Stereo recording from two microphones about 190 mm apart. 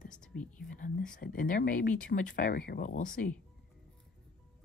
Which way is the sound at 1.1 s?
50° left (ahead or behind).